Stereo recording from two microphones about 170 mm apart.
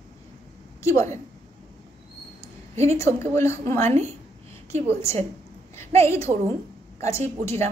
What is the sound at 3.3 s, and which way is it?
A woman's voice, 15° left (ahead or behind).